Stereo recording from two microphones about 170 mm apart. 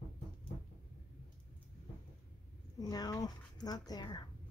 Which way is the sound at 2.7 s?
20° left (ahead or behind).